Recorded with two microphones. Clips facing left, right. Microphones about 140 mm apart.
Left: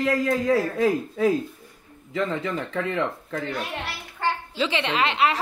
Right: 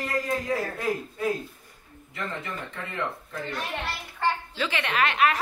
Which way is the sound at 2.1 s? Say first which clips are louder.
Left 8 dB; 90° left.